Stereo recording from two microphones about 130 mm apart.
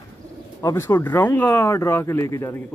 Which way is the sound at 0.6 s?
20° left (ahead or behind).